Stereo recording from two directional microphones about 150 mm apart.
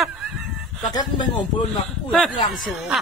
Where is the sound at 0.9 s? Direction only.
25° left (ahead or behind).